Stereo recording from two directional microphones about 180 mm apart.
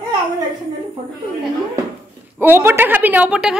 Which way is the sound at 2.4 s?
10° right (ahead or behind).